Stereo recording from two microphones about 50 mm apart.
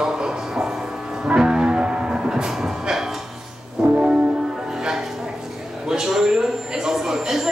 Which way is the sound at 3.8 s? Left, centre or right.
Right.